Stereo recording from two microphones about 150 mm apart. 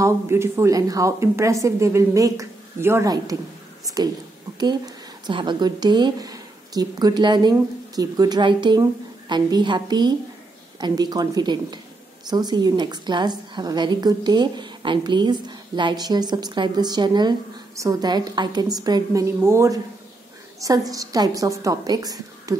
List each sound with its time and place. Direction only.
0.0 s a woman's voice: 15° right (ahead or behind)